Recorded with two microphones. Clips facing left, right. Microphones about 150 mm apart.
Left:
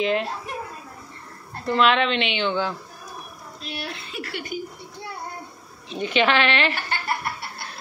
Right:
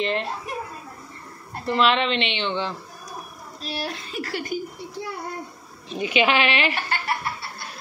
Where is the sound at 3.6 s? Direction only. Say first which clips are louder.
Right 3 dB; 35° right (ahead or behind).